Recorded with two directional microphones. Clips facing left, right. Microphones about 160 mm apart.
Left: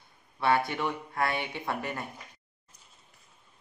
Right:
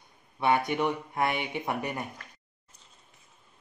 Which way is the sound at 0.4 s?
15° right (ahead or behind).